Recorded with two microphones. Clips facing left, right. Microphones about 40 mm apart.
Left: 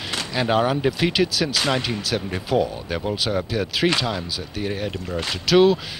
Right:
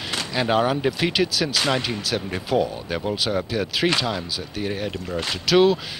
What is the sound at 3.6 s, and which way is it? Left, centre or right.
Speech, centre.